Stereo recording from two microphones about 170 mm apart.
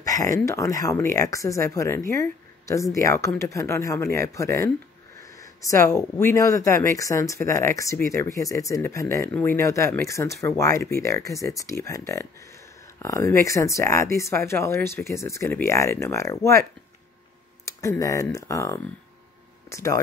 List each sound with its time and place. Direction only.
0.0 s speech: 20° left (ahead or behind)
5.2 s a sound: 20° left (ahead or behind)
5.9 s speech: 20° left (ahead or behind)
17.6 s speech: 20° left (ahead or behind)